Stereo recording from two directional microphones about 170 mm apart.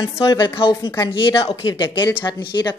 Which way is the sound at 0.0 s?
25° left (ahead or behind).